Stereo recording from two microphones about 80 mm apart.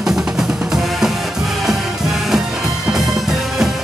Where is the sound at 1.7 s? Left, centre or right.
Centre.